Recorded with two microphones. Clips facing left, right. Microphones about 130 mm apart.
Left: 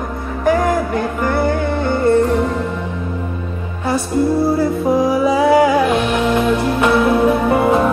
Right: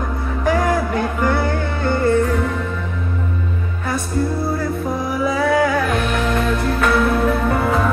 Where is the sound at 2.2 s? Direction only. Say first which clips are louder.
Left 4 dB; 25° left (ahead or behind).